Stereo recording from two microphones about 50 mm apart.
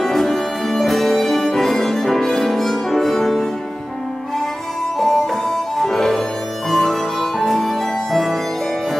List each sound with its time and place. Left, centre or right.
0.0 s music: centre
4.9 s music: centre